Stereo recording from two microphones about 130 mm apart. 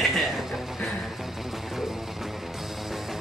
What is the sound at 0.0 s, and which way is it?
Music, centre (ahead or behind).